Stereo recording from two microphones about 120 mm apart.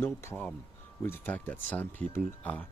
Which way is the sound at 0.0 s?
15° left (ahead or behind).